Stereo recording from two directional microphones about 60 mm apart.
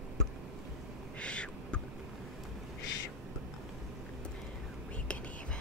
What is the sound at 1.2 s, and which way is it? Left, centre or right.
Owl, centre.